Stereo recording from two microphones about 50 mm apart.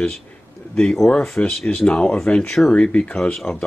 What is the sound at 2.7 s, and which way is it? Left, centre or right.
Speech, left.